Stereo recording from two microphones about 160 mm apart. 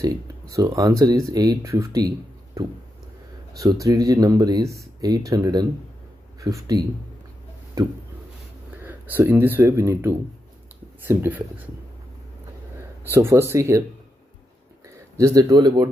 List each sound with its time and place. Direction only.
0.0 s speech: 20° right (ahead or behind)
3.5 s speech: 20° right (ahead or behind)
8.6 s speech: 10° right (ahead or behind)
13.0 s speech: 15° right (ahead or behind)
15.1 s speech: 20° right (ahead or behind)